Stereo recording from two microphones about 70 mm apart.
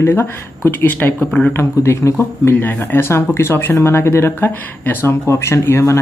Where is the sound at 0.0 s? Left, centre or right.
Left.